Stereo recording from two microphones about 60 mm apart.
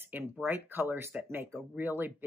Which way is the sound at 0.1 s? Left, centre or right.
Right.